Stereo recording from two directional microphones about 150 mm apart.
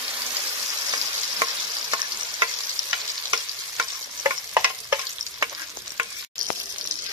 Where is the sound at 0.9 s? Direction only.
25° right (ahead or behind).